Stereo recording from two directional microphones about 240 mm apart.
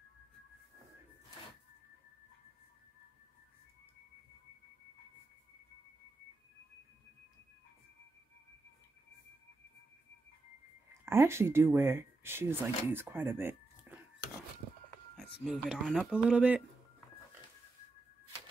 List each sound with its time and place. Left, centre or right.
11.1 s speech: centre
15.4 s speech: centre